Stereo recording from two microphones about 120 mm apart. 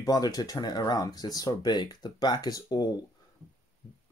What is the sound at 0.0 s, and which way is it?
Speech, 30° left (ahead or behind).